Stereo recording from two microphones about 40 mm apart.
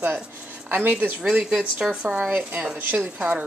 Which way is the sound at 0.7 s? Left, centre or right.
Right.